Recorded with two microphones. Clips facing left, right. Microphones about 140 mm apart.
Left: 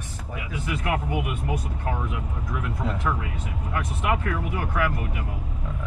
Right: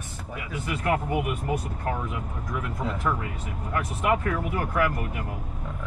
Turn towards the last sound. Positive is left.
turn(degrees=-50)  # may be behind; listen again after turning